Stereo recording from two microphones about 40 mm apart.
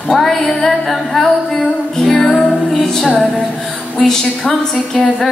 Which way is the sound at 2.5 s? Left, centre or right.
Centre.